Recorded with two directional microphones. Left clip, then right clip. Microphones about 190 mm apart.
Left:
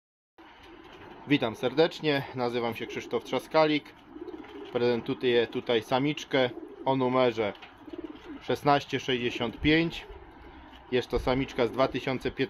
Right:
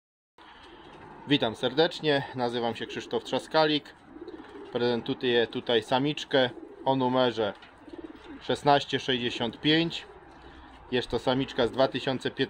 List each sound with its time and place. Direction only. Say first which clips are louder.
1.2 s speech: right 1 dB; 20° right (ahead or behind)